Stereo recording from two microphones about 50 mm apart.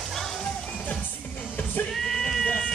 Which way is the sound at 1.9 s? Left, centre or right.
Centre.